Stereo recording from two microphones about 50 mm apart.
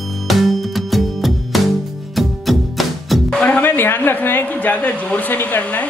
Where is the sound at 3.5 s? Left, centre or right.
Left.